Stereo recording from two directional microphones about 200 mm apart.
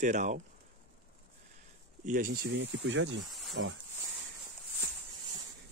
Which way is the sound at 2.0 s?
45° right (ahead or behind).